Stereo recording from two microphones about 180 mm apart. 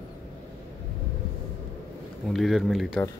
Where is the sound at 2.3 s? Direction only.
Centre (ahead or behind).